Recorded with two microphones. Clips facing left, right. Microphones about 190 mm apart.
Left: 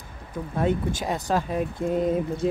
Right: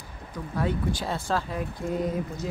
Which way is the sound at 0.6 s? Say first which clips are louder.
Left 3 dB; 20° left (ahead or behind).